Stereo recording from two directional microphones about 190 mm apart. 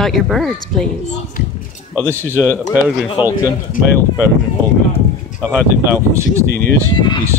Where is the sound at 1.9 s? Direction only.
10° right (ahead or behind).